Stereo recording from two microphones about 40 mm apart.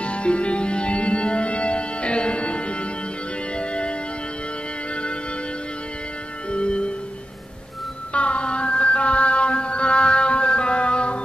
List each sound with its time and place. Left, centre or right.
0.0 s music: left
6.5 s music: left
8.1 s music: left